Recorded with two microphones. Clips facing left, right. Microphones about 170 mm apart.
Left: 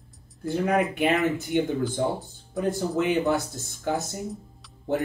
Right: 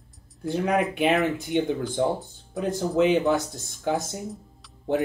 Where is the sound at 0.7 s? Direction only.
Centre (ahead or behind).